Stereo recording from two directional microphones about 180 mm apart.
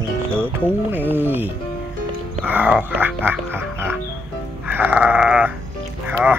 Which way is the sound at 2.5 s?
10° right (ahead or behind).